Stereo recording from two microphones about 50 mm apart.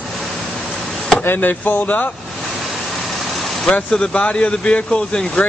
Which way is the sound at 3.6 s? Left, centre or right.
Left.